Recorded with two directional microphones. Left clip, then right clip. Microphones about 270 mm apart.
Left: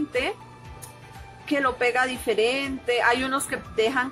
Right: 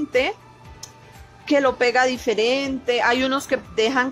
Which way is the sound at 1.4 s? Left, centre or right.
Right.